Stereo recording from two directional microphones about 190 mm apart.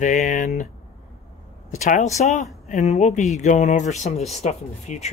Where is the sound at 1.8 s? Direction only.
40° left (ahead or behind).